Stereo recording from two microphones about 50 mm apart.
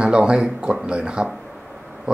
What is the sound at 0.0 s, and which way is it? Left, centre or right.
A man's voice, centre.